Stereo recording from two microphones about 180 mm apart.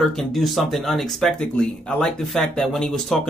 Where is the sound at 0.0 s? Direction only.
Centre (ahead or behind).